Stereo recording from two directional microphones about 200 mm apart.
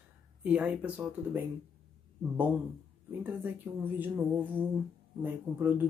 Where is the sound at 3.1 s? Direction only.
10° right (ahead or behind).